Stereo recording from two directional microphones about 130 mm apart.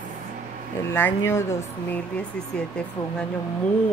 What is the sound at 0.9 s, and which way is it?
Speech, 15° left (ahead or behind).